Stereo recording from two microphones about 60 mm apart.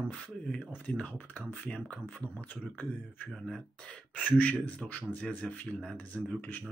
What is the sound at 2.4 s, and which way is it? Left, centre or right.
Speech, left.